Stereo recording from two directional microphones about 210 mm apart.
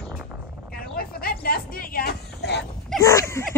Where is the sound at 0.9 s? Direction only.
45° left (ahead or behind).